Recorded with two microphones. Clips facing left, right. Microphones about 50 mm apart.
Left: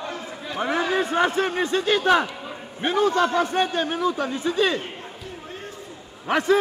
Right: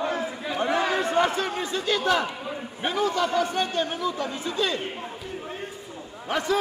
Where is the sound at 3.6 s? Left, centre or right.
Left.